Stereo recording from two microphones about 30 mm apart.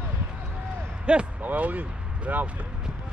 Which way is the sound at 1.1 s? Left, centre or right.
Right.